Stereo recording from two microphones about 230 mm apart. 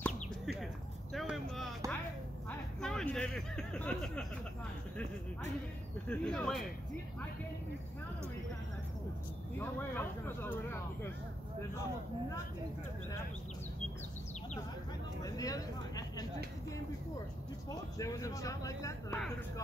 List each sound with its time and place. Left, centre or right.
0.0 s a sound: centre
2.8 s speech: centre
6.0 s speech: centre
9.6 s speech: centre
15.2 s speech: centre
17.6 s speech: centre